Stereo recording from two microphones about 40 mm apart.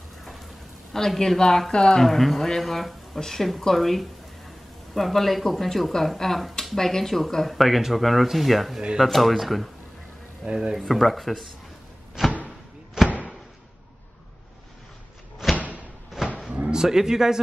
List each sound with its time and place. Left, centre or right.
0.2 s rain: centre
0.9 s speech: centre
1.7 s speech: left
2.0 s speech: centre
10.5 s speech: centre
10.9 s speech: centre
12.2 s a sound: centre
15.5 s thump: right
16.1 s a sound: centre
16.6 s speech: centre